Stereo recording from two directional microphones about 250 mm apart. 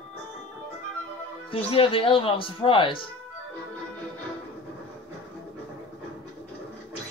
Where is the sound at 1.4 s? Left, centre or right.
Left.